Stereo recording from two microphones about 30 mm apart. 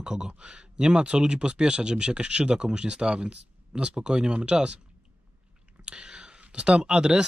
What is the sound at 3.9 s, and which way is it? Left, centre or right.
Speech, right.